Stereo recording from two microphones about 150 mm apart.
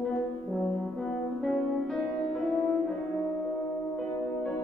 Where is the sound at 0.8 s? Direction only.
5° left (ahead or behind).